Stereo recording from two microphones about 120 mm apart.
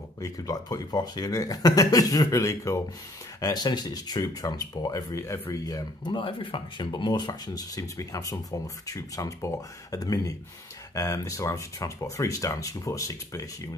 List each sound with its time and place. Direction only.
0.2 s speech: 30° left (ahead or behind)
6.1 s speech: 45° left (ahead or behind); by 13.5 s 30° left (ahead or behind)